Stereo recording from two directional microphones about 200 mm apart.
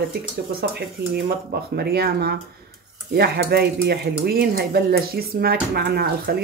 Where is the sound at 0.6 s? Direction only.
50° right (ahead or behind).